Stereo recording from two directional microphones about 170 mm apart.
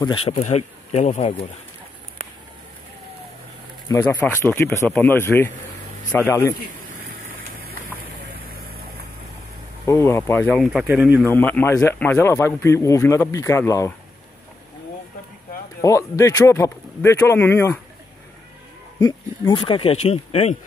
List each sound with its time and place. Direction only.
0.0 s speech: 35° left (ahead or behind)
3.9 s a man's voice: 10° left (ahead or behind)
7.5 s a sound: 60° right (ahead or behind)
9.8 s speech: 15° left (ahead or behind); by 11.2 s 5° right (ahead or behind)
11.2 s a man's voice: 10° left (ahead or behind)
15.8 s a man's voice: 20° left (ahead or behind)
18.9 s speech: 25° left (ahead or behind)